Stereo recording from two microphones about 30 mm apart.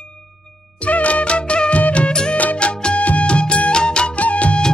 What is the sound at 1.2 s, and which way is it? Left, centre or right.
Music, left.